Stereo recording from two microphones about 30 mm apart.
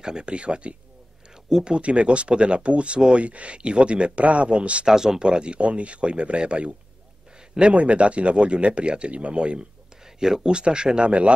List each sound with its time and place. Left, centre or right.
0.0 s speech: right
0.3 s speech: right
4.8 s speech: centre
5.2 s speech: right
10.0 s speech: right
11.1 s a man's voice: right